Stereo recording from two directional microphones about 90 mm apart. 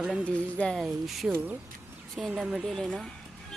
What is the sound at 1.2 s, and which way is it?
Speech, 15° right (ahead or behind).